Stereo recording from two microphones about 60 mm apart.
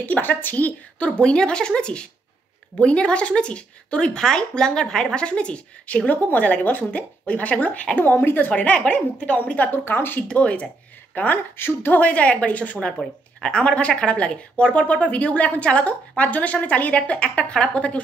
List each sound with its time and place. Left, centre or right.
0.0 s speech: left
10.2 s speech: centre
11.1 s speech: left